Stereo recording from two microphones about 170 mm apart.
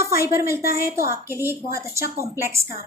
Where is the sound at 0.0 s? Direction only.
15° right (ahead or behind).